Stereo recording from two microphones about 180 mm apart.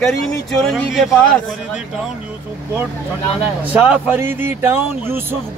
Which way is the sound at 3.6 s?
10° right (ahead or behind).